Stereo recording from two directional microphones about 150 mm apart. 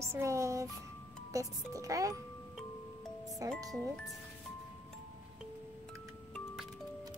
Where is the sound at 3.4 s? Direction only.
20° right (ahead or behind).